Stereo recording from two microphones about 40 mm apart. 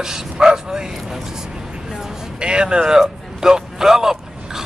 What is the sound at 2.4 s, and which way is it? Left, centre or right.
Speech, right.